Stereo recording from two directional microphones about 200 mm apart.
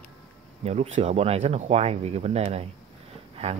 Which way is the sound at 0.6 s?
30° right (ahead or behind).